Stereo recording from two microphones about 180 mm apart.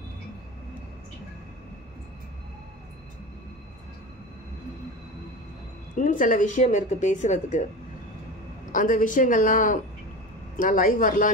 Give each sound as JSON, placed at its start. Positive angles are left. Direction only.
{"t": 5.9, "sound": "speech", "side_deg": 45}
{"t": 8.7, "sound": "speech", "side_deg": 50}